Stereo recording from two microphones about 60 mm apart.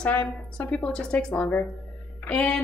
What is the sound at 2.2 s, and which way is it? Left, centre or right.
Speech, centre.